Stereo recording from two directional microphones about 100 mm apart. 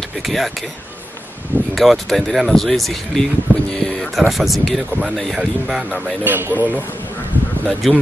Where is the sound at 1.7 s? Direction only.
Centre (ahead or behind).